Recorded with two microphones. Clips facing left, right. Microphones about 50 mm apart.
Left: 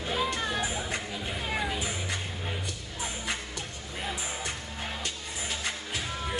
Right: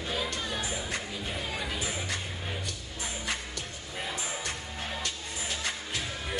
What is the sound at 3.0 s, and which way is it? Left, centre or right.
Music, centre.